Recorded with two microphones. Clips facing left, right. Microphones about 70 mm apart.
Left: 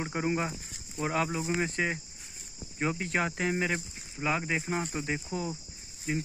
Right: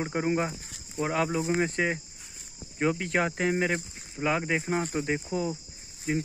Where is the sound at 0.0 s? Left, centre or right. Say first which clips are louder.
Right 3 dB; right.